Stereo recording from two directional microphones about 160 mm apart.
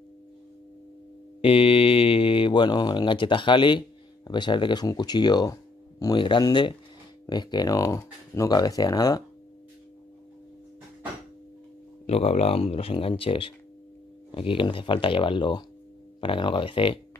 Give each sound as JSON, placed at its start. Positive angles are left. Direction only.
{"t": 1.4, "sound": "speech", "side_deg": 35}
{"t": 12.1, "sound": "speech", "side_deg": 40}